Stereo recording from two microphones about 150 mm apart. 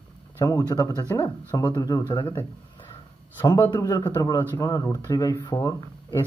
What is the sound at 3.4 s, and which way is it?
Speech, 20° left (ahead or behind).